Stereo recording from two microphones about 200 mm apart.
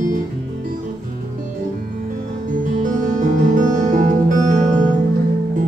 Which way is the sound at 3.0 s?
40° right (ahead or behind).